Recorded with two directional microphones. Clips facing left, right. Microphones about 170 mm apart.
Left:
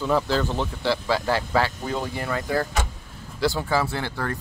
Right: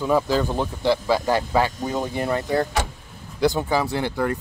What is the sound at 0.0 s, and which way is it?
Speech, 15° right (ahead or behind).